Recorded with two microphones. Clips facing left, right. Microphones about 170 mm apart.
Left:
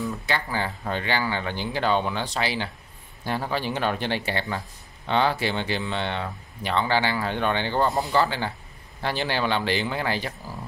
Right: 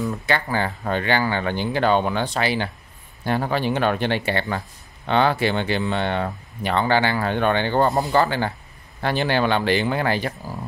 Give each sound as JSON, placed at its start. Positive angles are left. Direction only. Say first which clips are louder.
{"t": 0.1, "sound": "speech", "louder": "right 5 dB", "side_deg": -55}